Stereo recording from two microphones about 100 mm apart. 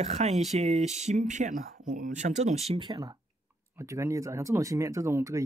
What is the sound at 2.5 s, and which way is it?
Speech, 90° right.